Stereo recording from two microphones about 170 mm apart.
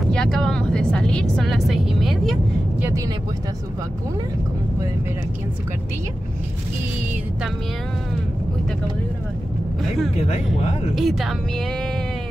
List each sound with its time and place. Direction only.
0.1 s speech: 5° left (ahead or behind)
10.2 s speech: 40° left (ahead or behind)
11.0 s speech: centre (ahead or behind)